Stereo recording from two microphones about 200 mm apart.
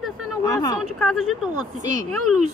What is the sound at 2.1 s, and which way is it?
Speech, 90° right.